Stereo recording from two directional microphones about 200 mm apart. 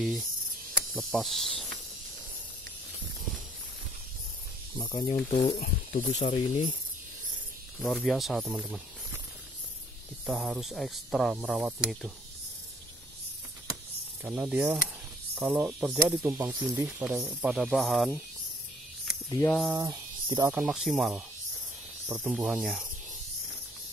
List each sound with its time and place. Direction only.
0.9 s speech: centre (ahead or behind)
4.7 s speech: 20° left (ahead or behind)
5.5 s speech: 50° left (ahead or behind)
6.1 s speech: 35° left (ahead or behind)
7.8 s speech: centre (ahead or behind)
10.2 s speech: centre (ahead or behind)
14.2 s speech: 5° right (ahead or behind)
19.2 s speech: 15° left (ahead or behind)
19.8 s speech: 20° right (ahead or behind)
20.5 s speech: 5° right (ahead or behind)